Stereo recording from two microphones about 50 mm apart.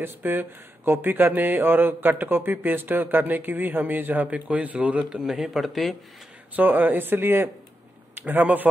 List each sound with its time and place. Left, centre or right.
0.0 s speech: right
5.1 s a man's voice: centre
6.5 s speech: right
8.2 s speech: right